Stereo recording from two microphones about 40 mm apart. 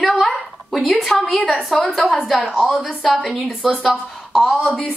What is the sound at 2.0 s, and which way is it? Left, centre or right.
Speech, centre.